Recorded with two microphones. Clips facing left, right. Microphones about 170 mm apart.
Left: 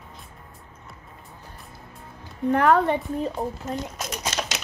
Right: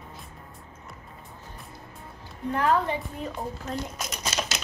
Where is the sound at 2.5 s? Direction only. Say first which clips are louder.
Left 5 dB; 65° left (ahead or behind).